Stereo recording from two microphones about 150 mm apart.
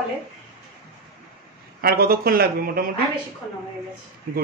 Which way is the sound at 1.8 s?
85° right.